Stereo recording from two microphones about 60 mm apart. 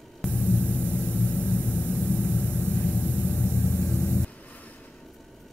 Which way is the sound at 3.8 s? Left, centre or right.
Centre.